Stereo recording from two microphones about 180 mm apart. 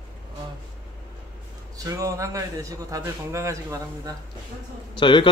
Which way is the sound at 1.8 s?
20° right (ahead or behind).